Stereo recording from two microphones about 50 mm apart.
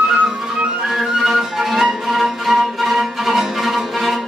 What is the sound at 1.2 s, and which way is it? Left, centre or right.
Music, centre.